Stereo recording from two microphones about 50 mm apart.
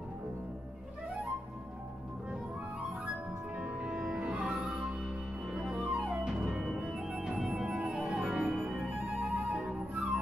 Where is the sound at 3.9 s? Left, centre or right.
Centre.